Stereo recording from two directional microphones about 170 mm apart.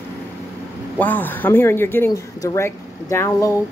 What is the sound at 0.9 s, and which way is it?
Speech, 10° left (ahead or behind).